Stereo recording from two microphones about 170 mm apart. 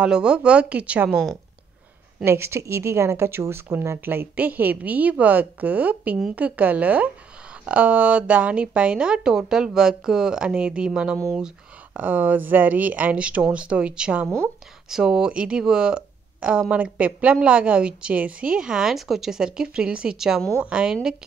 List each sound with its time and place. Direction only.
0.0 s speech: 5° right (ahead or behind)
2.1 s a woman's voice: 15° right (ahead or behind)